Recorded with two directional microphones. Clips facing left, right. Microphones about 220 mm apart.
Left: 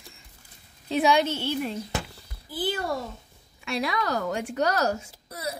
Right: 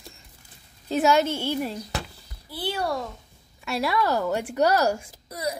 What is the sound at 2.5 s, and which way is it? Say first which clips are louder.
Speech: left 2 dB; 65° right (ahead or behind).